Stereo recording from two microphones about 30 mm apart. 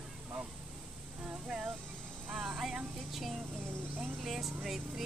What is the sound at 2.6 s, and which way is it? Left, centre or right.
Speech, centre.